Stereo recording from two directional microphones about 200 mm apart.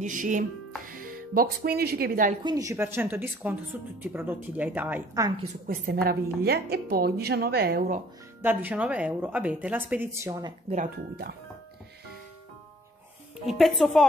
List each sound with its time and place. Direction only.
0.0 s speech: 40° right (ahead or behind)
2.4 s speech: 15° right (ahead or behind)
5.7 s a woman's voice: 50° right (ahead or behind)
8.4 s speech: 10° right (ahead or behind)
13.5 s a woman's voice: centre (ahead or behind)